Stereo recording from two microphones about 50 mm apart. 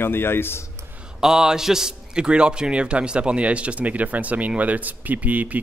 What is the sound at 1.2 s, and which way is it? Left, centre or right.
A man's voice, centre.